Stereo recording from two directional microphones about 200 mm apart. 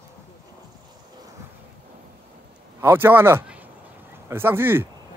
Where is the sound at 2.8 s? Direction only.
10° right (ahead or behind).